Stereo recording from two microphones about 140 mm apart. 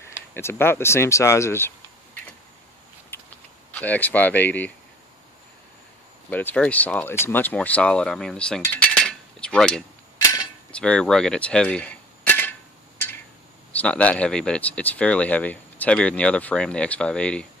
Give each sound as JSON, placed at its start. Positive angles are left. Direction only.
{"t": 0.3, "sound": "speech", "side_deg": 15}
{"t": 3.1, "sound": "a sound", "side_deg": 15}
{"t": 3.7, "sound": "speech", "side_deg": 10}
{"t": 6.3, "sound": "speech", "side_deg": 10}
{"t": 13.7, "sound": "speech", "side_deg": 10}